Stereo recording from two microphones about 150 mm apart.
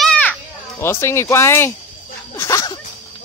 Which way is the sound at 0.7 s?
20° left (ahead or behind).